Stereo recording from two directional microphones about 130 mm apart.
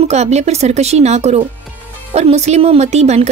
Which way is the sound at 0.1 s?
60° right (ahead or behind).